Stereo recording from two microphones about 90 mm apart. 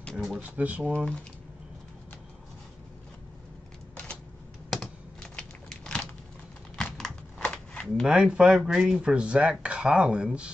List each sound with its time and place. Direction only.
0.0 s speech: 5° left (ahead or behind)
0.4 s speech: 15° right (ahead or behind)
5.3 s a sound: 10° left (ahead or behind)
6.8 s typing: 10° left (ahead or behind)
8.1 s speech: 10° right (ahead or behind)